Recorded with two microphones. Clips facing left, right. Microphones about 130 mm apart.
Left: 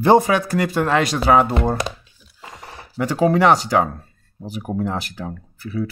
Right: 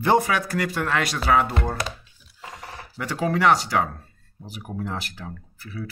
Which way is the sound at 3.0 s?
25° left (ahead or behind).